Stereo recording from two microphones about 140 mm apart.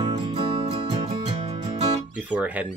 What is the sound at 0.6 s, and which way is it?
Music, 50° right (ahead or behind).